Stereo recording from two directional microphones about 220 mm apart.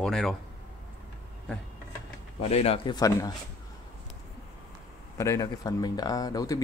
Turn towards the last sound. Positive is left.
turn(degrees=15)  # may be behind; listen again after turning